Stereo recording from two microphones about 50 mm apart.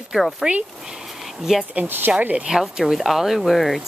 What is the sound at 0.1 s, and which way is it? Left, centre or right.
Speech, centre.